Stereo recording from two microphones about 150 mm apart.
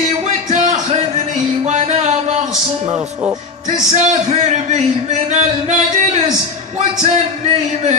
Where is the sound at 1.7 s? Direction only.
50° right (ahead or behind).